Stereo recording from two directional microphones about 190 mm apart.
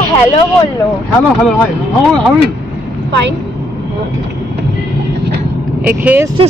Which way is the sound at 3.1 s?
65° right (ahead or behind).